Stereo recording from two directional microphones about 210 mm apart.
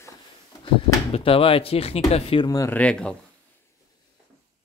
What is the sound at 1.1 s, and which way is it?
Speech, 25° left (ahead or behind).